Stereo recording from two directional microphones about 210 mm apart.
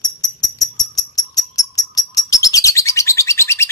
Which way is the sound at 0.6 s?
20° left (ahead or behind).